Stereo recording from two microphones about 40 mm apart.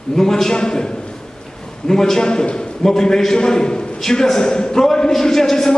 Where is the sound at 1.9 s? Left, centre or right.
Centre.